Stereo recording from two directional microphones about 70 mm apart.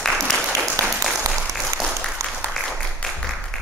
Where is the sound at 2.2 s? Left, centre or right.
Right.